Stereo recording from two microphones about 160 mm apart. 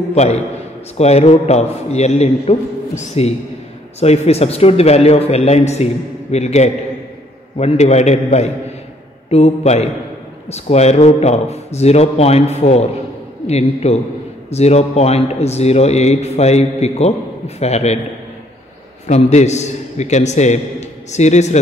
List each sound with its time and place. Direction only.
0.1 s a man's voice: 45° left (ahead or behind)
19.0 s a man's voice: 45° left (ahead or behind)